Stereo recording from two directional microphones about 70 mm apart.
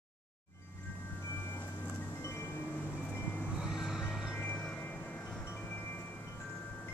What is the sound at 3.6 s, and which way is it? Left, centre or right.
Vehicle, centre.